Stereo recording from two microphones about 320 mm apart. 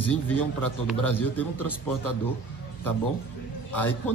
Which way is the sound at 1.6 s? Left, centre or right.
Left.